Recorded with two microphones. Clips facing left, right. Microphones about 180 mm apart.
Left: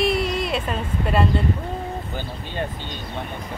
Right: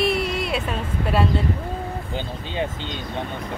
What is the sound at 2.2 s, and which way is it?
Speech, 20° right (ahead or behind).